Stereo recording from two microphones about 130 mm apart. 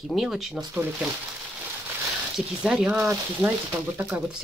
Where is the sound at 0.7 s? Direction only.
15° right (ahead or behind).